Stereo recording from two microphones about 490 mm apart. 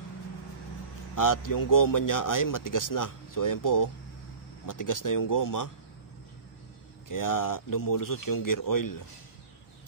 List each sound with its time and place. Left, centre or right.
1.1 s a man's voice: left
7.1 s a man's voice: left